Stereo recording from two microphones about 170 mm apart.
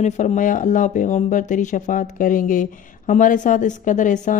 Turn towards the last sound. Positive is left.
turn(degrees=45)  # may be behind; listen again after turning